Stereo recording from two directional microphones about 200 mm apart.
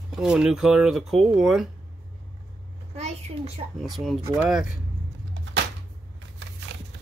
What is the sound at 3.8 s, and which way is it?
Speech, centre (ahead or behind).